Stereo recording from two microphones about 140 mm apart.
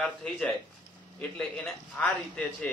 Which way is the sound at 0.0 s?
5° left (ahead or behind).